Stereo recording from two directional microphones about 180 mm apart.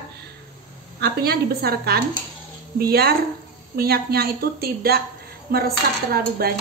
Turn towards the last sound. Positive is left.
turn(degrees=-60)  # may be behind; listen again after turning